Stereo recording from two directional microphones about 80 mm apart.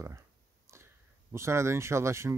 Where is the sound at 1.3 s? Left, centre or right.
Right.